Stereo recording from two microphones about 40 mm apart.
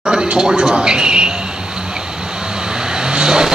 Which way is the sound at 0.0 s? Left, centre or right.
Right.